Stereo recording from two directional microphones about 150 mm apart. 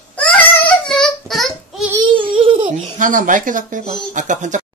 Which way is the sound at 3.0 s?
60° right (ahead or behind).